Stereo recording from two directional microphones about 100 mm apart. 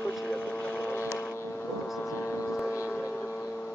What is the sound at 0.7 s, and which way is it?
Vehicle, 25° right (ahead or behind).